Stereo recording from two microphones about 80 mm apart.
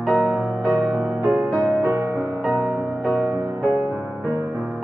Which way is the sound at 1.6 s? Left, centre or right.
Right.